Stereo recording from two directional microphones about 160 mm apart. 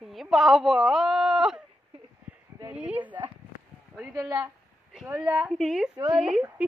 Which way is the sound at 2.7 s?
10° right (ahead or behind).